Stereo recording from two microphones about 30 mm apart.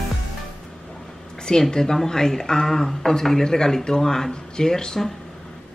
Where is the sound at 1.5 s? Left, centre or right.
Left.